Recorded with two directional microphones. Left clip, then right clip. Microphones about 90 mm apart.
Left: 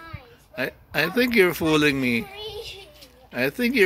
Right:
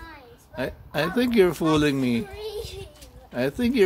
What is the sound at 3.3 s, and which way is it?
Speech, 5° right (ahead or behind).